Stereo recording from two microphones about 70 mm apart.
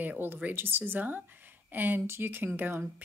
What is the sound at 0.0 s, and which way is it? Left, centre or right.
Speech, right.